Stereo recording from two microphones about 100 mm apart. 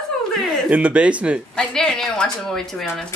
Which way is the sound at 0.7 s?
15° right (ahead or behind).